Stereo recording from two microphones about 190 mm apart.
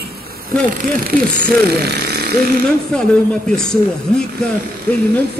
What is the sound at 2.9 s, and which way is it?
Speech, 5° left (ahead or behind).